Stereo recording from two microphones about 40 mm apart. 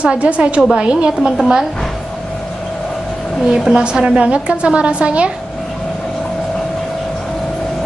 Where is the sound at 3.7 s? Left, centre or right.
Right.